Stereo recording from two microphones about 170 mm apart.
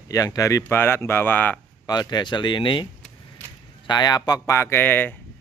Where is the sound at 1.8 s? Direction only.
25° left (ahead or behind).